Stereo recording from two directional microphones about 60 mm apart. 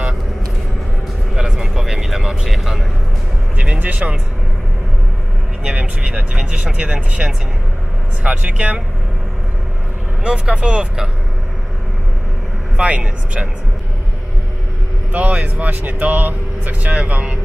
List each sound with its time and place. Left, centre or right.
1.3 s a sound: centre
3.6 s speech: centre
5.7 s speech: right
10.2 s speech: centre
12.7 s speech: centre
15.1 s speech: right